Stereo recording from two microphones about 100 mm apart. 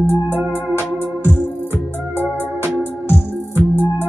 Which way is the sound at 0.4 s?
20° right (ahead or behind).